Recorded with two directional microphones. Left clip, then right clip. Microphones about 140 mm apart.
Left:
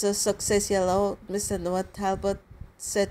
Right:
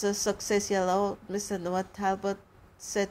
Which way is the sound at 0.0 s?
20° left (ahead or behind).